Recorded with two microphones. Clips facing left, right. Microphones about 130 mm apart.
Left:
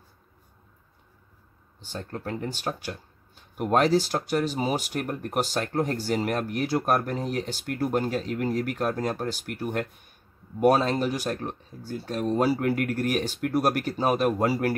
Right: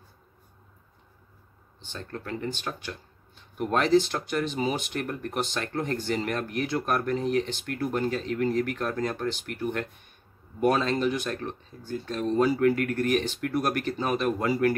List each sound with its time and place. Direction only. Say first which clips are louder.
1.9 s speech: left 2 dB; 40° left (ahead or behind)
12.4 s speech: right 1 dB; 35° left (ahead or behind)